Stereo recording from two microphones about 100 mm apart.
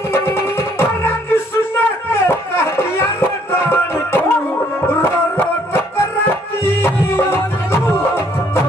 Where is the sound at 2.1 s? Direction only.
25° left (ahead or behind).